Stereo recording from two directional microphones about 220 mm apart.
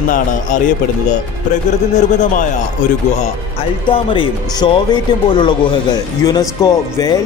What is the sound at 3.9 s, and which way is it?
A man's voice, 25° left (ahead or behind).